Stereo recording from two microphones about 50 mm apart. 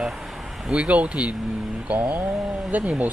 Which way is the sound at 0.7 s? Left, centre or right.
Right.